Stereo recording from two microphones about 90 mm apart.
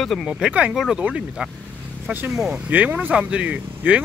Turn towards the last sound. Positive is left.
turn(degrees=-15)  # may be behind; listen again after turning